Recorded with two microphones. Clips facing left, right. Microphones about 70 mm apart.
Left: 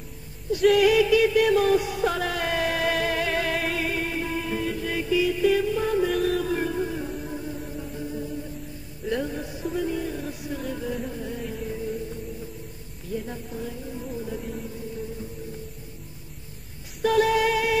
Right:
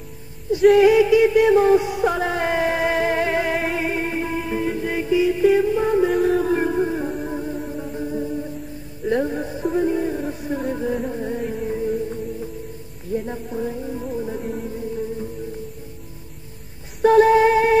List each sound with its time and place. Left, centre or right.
0.7 s music: right
13.1 s a sound: right
14.2 s music: right
17.0 s female singing: right